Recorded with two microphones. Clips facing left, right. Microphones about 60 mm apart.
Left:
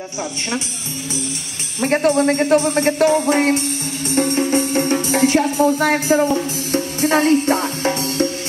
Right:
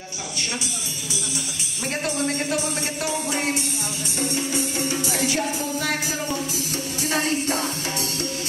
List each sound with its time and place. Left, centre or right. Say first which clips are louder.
1.8 s speech: left 11 dB; left
4.1 s music: left 10 dB; left